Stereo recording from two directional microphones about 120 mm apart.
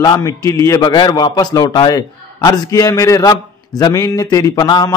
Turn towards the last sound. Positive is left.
turn(degrees=35)  # may be behind; listen again after turning